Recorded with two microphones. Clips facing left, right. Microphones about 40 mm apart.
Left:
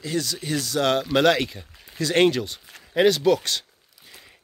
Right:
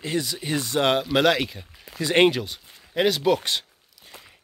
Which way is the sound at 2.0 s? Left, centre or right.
Centre.